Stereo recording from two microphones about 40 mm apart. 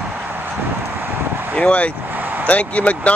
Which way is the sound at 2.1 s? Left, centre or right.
Right.